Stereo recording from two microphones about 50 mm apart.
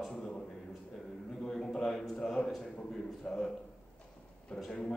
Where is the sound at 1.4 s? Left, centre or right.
Centre.